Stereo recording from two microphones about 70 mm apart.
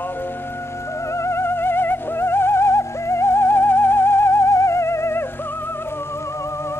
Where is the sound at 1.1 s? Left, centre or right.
Left.